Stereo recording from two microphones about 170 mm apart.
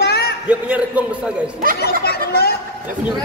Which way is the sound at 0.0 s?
70° left (ahead or behind).